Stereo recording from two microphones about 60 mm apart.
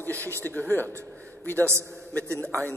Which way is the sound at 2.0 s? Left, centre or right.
Left.